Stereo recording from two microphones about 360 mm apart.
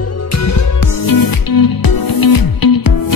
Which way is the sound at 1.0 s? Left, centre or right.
Left.